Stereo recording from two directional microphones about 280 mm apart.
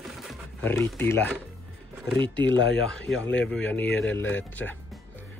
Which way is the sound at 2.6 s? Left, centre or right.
Left.